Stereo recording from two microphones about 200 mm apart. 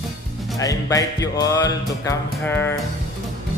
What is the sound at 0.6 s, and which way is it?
Music, 15° left (ahead or behind).